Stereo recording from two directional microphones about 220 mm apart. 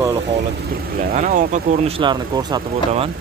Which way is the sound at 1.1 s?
35° right (ahead or behind).